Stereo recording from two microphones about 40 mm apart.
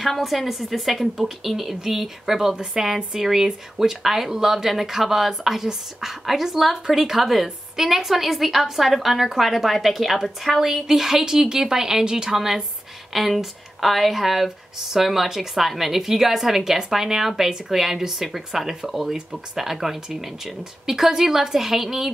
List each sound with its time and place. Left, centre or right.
0.0 s speech: centre